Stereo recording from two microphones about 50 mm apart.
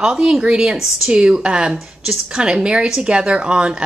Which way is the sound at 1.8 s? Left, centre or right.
Centre.